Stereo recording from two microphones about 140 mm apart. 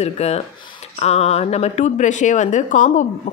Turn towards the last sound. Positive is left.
turn(degrees=65)  # may be behind; listen again after turning